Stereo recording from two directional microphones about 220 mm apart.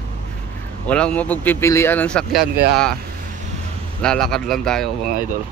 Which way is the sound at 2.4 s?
45° right (ahead or behind).